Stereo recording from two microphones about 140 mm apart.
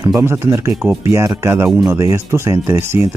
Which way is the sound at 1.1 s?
20° right (ahead or behind).